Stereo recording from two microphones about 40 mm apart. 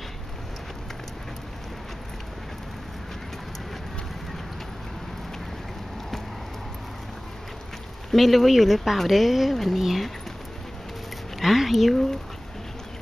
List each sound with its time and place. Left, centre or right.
8.1 s speech: centre
11.3 s speech: centre